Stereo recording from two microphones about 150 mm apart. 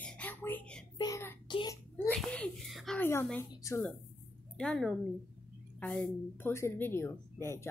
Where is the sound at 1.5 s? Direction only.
30° left (ahead or behind).